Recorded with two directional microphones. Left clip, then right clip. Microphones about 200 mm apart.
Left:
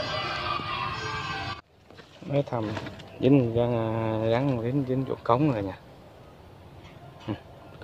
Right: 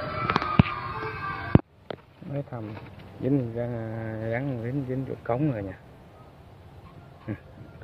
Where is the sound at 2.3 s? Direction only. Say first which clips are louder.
Left 8 dB; 15° left (ahead or behind).